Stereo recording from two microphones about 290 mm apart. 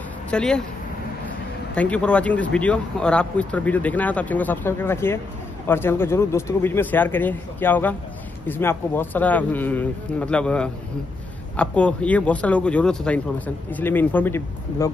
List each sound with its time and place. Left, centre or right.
0.3 s speech: centre
1.8 s a man's voice: centre